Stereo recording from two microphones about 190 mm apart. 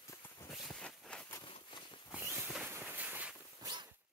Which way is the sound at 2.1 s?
5° right (ahead or behind).